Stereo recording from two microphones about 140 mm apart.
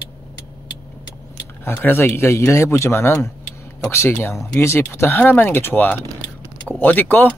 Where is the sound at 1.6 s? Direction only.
15° left (ahead or behind).